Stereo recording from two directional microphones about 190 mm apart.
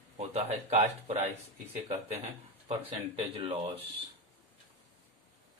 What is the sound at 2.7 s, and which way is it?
Speech, 30° right (ahead or behind).